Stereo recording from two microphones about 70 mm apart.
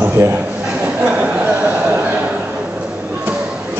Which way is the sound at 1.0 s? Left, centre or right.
Centre.